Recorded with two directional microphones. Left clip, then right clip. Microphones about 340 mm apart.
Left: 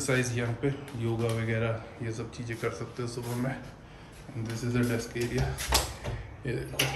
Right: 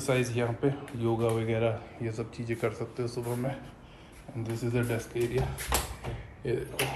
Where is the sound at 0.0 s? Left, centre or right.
Centre.